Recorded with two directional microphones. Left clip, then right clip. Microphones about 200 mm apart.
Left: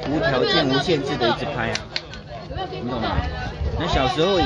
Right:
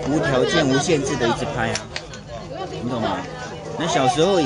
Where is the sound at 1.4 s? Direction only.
15° right (ahead or behind).